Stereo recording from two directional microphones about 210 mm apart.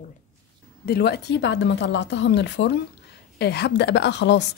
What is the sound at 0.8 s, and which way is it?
A woman's voice, 50° left (ahead or behind).